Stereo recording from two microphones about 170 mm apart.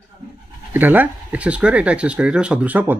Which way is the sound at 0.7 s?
10° right (ahead or behind).